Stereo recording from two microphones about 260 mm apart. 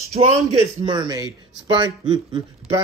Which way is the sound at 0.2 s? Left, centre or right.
Right.